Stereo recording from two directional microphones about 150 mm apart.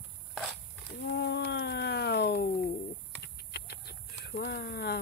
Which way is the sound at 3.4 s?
90° left.